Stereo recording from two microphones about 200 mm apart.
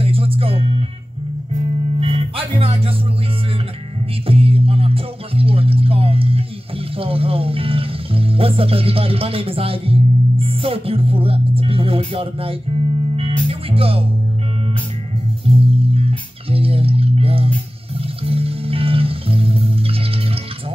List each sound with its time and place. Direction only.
0.0 s music: 30° right (ahead or behind)
4.3 s music: 30° right (ahead or behind)
15.7 s music: 30° right (ahead or behind)